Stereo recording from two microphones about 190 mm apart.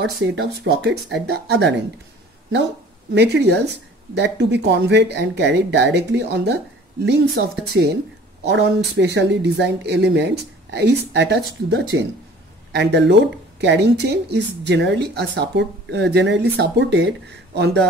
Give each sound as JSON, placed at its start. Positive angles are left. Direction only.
{"t": 0.0, "sound": "speech", "side_deg": -65}
{"t": 3.2, "sound": "speech", "side_deg": -65}